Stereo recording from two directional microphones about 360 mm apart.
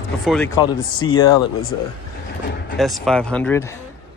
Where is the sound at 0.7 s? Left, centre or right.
Left.